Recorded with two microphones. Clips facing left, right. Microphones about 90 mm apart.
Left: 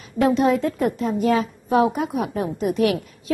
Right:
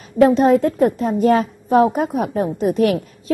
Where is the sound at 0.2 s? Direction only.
40° right (ahead or behind).